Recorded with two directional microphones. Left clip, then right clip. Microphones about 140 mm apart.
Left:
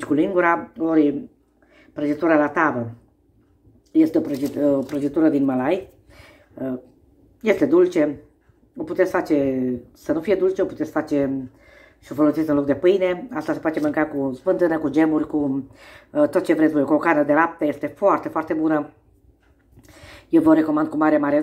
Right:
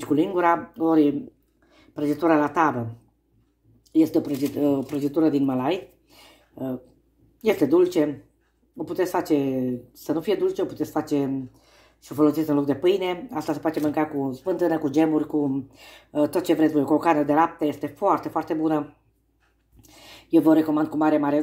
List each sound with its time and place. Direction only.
0.0 s speech: 10° right (ahead or behind)
1.8 s a woman's voice: 15° right (ahead or behind)
3.9 s speech: 15° right (ahead or behind)
19.9 s speech: 10° right (ahead or behind)